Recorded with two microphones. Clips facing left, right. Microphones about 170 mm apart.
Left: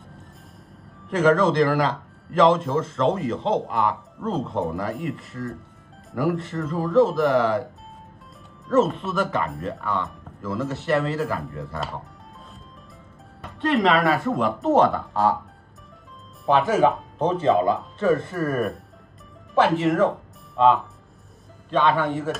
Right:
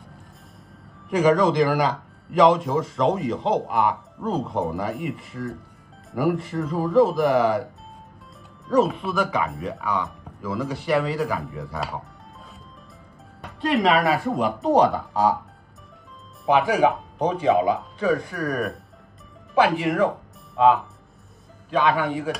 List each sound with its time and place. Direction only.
1.1 s speech: centre (ahead or behind)
8.6 s speech: centre (ahead or behind)
13.4 s speech: centre (ahead or behind)
16.4 s speech: centre (ahead or behind)